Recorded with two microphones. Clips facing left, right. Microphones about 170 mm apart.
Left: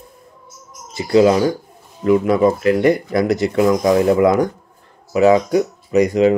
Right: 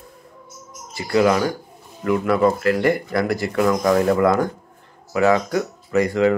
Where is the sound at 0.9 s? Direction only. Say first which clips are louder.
Left 5 dB; 25° left (ahead or behind).